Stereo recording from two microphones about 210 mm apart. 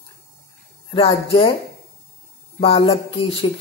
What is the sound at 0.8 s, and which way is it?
Speech, 25° left (ahead or behind).